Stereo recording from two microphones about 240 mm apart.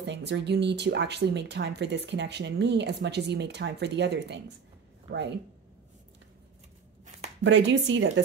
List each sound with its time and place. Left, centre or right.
0.0 s speech: right
7.4 s speech: right